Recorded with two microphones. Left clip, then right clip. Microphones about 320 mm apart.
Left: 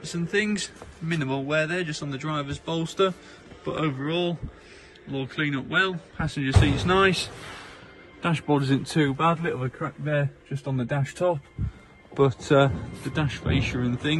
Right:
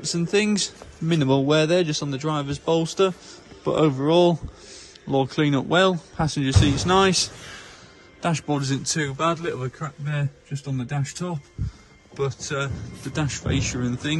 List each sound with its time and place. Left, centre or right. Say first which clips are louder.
0.0 s a man's voice: right 4 dB; centre
8.2 s a man's voice: even; centre
12.3 s a man's voice: left 8 dB; centre